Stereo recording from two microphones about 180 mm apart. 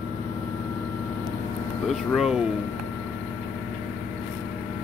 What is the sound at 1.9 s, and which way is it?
Speech, centre (ahead or behind).